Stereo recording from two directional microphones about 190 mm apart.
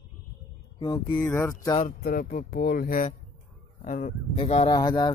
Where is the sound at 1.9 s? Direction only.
50° left (ahead or behind).